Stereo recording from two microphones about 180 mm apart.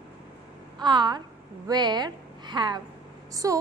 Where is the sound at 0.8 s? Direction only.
25° right (ahead or behind).